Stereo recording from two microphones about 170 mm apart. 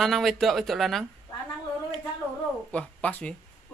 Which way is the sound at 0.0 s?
Centre (ahead or behind).